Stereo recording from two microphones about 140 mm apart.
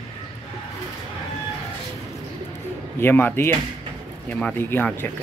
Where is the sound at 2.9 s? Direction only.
15° left (ahead or behind).